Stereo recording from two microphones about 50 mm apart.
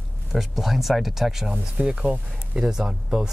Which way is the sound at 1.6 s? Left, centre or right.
Centre.